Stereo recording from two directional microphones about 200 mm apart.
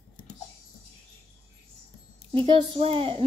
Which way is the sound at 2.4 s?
30° right (ahead or behind).